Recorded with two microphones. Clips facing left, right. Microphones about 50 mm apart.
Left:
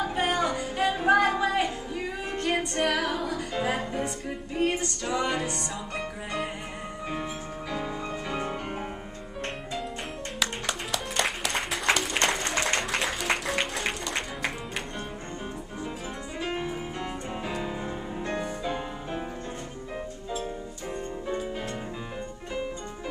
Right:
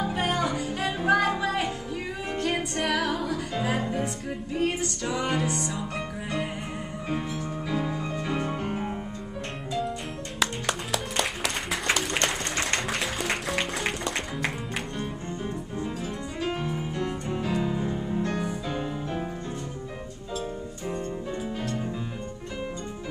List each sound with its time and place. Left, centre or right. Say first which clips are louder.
0.0 s music: even; centre
7.7 s music: right 2 dB; centre
10.4 s music: right 3 dB; centre
16.3 s music: right 1 dB; centre